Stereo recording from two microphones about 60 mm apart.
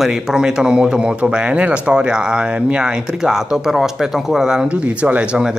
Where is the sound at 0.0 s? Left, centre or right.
Centre.